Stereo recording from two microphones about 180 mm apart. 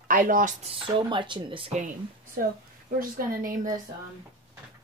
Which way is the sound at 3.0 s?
50° right (ahead or behind).